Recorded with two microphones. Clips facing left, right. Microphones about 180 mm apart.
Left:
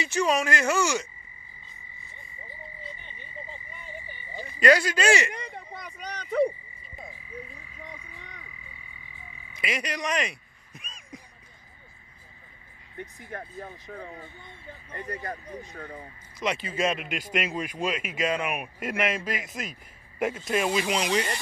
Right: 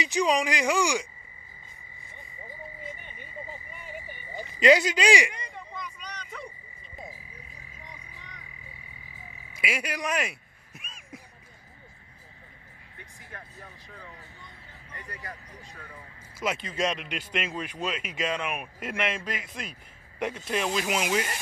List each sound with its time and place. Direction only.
0.0 s speech: 15° right (ahead or behind)
3.0 s frog: 10° right (ahead or behind)
5.3 s a sound: 60° left (ahead or behind)
7.8 s frog: 60° left (ahead or behind)
9.5 s a sound: 5° right (ahead or behind)
13.3 s speech: 45° left (ahead or behind)
14.9 s vehicle: 55° left (ahead or behind)
15.7 s speech: 45° left (ahead or behind)
16.3 s speech: centre (ahead or behind)